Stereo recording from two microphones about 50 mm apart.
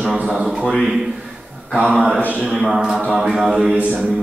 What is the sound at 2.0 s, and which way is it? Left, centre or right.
A man's voice, centre.